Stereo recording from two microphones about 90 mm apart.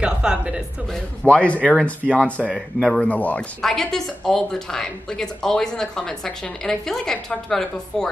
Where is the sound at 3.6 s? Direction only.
5° left (ahead or behind).